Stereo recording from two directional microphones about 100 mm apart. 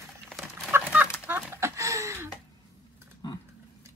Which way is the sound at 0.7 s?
20° right (ahead or behind).